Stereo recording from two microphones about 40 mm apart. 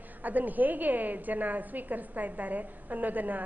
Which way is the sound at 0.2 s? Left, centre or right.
Right.